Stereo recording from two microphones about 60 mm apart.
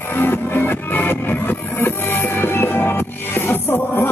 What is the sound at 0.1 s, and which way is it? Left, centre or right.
Music, left.